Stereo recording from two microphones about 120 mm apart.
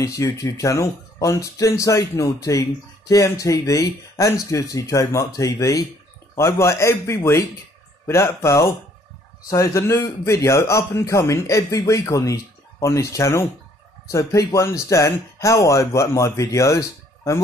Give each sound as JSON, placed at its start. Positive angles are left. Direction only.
{"t": 0.0, "sound": "speech", "side_deg": 25}